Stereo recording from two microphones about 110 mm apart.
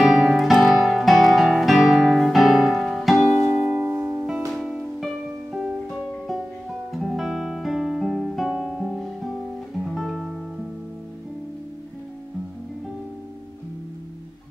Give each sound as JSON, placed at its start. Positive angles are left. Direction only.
{"t": 0.0, "sound": "guitar", "side_deg": -5}
{"t": 3.3, "sound": "music", "side_deg": -20}
{"t": 4.5, "sound": "music", "side_deg": 0}
{"t": 6.9, "sound": "guitar", "side_deg": 0}
{"t": 9.8, "sound": "music", "side_deg": 0}